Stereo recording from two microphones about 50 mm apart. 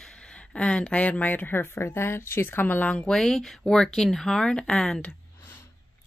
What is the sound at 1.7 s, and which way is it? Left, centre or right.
Speech, left.